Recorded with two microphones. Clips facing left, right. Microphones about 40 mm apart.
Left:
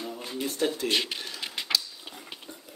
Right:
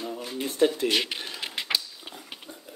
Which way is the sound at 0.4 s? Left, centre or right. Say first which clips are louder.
Right 5 dB; centre.